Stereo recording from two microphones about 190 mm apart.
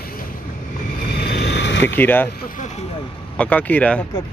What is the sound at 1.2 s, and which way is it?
Vehicle, 60° left (ahead or behind).